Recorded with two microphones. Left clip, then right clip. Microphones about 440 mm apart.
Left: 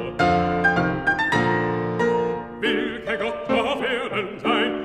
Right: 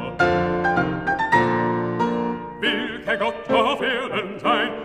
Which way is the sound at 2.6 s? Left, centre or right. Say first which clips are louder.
Right 1 dB; right.